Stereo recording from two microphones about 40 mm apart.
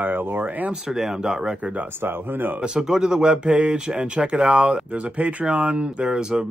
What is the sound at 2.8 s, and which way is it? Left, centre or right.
Speech, centre.